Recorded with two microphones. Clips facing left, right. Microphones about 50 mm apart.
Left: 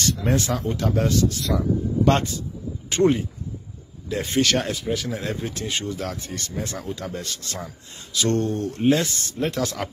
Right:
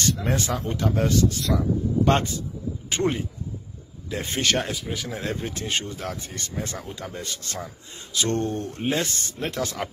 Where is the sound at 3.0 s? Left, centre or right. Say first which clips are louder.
Left 6 dB; centre.